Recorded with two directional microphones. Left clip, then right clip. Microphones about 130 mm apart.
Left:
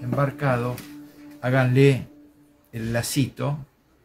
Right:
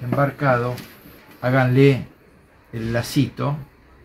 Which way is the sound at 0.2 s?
15° left (ahead or behind).